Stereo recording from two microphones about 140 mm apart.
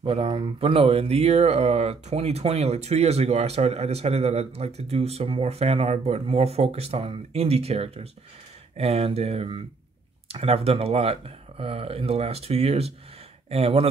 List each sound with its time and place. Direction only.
0.0 s speech: 40° right (ahead or behind)